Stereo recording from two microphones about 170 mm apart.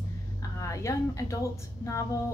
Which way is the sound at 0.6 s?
20° left (ahead or behind).